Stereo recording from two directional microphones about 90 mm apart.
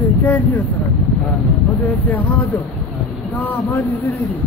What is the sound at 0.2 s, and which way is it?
Vehicle, 20° left (ahead or behind).